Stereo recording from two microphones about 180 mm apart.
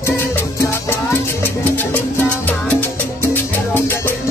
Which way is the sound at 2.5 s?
10° left (ahead or behind).